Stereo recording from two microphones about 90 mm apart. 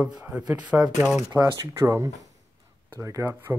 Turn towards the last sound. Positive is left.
turn(degrees=-35)  # may be behind; listen again after turning